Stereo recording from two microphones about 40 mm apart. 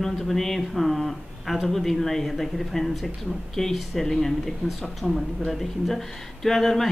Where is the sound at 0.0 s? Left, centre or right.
Centre.